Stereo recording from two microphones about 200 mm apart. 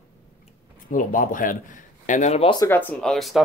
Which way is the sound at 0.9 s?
40° left (ahead or behind).